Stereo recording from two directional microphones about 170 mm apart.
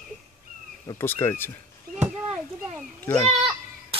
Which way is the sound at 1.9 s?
5° right (ahead or behind).